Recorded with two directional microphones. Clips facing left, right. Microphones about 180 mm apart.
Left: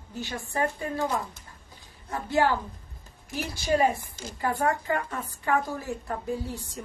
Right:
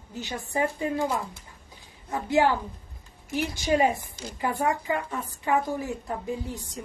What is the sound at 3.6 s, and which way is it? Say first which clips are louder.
A woman's voice: even; 15° right (ahead or behind).